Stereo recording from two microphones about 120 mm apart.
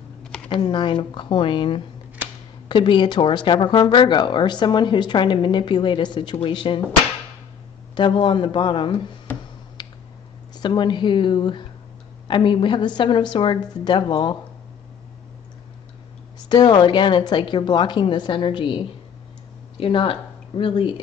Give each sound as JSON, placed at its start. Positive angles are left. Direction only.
{"t": 0.5, "sound": "speech", "side_deg": 40}
{"t": 7.9, "sound": "speech", "side_deg": 45}
{"t": 9.3, "sound": "tick-tock", "side_deg": 15}
{"t": 9.8, "sound": "a sound", "side_deg": 35}
{"t": 10.6, "sound": "speech", "side_deg": 40}
{"t": 16.4, "sound": "speech", "side_deg": 35}
{"t": 19.8, "sound": "speech", "side_deg": 45}